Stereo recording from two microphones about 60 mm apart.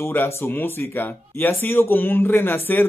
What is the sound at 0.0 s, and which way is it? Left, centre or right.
Speech, left.